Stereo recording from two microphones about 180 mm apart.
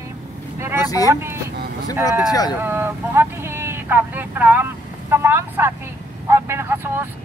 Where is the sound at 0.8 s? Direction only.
20° left (ahead or behind).